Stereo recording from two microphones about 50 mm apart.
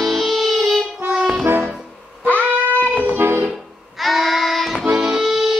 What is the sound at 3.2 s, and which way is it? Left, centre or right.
Music, right.